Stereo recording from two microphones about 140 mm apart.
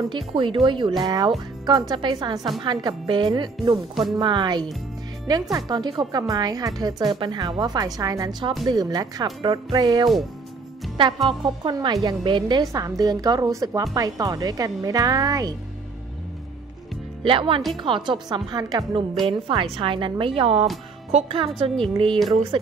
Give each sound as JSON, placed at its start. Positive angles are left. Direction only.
{"t": 0.1, "sound": "a woman's voice", "side_deg": -35}
{"t": 11.2, "sound": "a woman's voice", "side_deg": -35}
{"t": 17.2, "sound": "a woman's voice", "side_deg": -40}
{"t": 19.2, "sound": "a woman's voice", "side_deg": -40}